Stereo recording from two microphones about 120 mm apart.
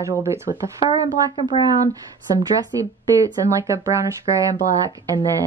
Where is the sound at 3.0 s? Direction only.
25° right (ahead or behind).